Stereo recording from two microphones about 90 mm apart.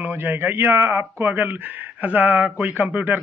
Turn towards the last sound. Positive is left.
turn(degrees=-20)  # may be behind; listen again after turning